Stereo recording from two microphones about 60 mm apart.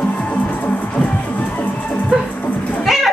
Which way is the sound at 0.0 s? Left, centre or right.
Left.